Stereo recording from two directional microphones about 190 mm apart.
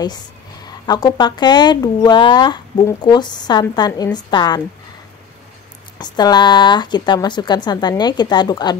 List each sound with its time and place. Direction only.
0.7 s speech: 20° left (ahead or behind)
5.9 s speech: 20° left (ahead or behind)